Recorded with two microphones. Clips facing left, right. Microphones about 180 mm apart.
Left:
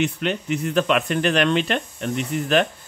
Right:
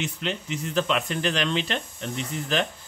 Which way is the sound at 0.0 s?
60° left (ahead or behind).